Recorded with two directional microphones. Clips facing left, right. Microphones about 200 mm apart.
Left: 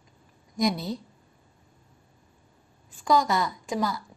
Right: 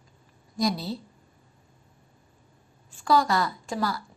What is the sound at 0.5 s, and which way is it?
Speech, 20° left (ahead or behind).